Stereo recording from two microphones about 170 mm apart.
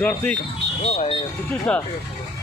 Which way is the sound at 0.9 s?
35° left (ahead or behind).